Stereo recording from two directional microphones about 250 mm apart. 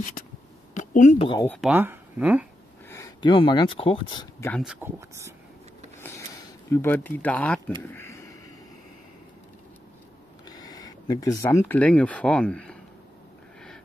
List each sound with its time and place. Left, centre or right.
0.7 s speech: left
1.5 s speech: centre
2.9 s speech: centre
4.5 s speech: centre
5.9 s a sound: centre
6.7 s speech: centre
7.9 s a sound: centre
10.4 s speech: centre